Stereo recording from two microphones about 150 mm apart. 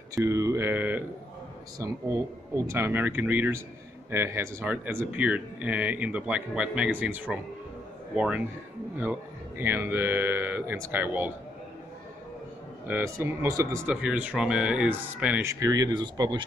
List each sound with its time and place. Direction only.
0.1 s speech: 20° right (ahead or behind)
8.9 s speech: 15° right (ahead or behind)
12.8 s speech: 15° right (ahead or behind)
14.0 s speech: 10° right (ahead or behind)
15.4 s speech: 25° right (ahead or behind)